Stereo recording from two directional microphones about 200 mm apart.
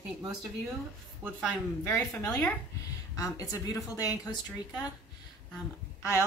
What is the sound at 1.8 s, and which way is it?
Speech, 10° left (ahead or behind).